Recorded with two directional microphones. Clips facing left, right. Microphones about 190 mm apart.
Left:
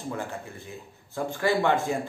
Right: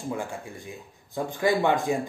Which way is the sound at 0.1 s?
15° right (ahead or behind).